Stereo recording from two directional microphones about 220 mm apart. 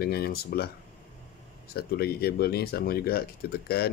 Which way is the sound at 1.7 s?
45° left (ahead or behind).